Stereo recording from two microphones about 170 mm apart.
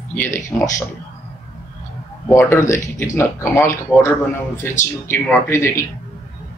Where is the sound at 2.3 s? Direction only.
15° left (ahead or behind).